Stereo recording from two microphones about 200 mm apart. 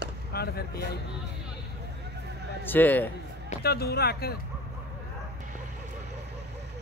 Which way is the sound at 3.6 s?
50° left (ahead or behind).